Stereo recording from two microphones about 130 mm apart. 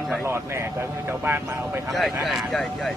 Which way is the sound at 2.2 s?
Centre (ahead or behind).